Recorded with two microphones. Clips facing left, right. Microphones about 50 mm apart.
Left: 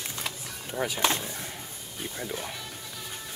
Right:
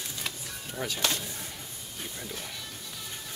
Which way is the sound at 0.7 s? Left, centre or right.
Centre.